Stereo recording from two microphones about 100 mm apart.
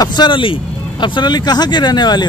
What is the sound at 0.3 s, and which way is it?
Speech, 60° left (ahead or behind).